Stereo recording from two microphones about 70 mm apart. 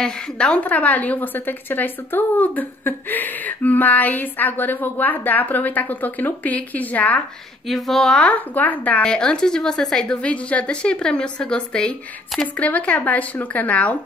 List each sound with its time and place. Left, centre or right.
0.0 s a woman's voice: centre
7.6 s speech: centre
8.2 s a woman's voice: left
9.0 s a woman's voice: centre
10.2 s a woman's voice: centre